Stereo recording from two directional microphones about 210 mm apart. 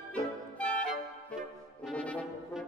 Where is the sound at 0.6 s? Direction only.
5° left (ahead or behind).